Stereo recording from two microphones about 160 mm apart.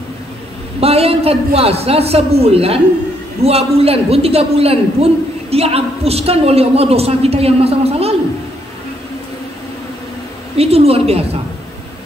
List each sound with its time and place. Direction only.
0.7 s a man's voice: 40° right (ahead or behind)
10.6 s a man's voice: 40° right (ahead or behind)